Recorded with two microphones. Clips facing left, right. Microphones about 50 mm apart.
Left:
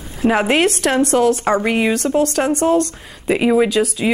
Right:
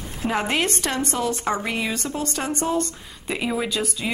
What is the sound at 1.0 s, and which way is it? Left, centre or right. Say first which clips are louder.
Speech: left 13 dB; left.